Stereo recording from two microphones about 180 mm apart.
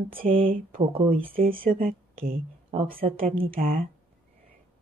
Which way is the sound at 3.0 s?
35° right (ahead or behind).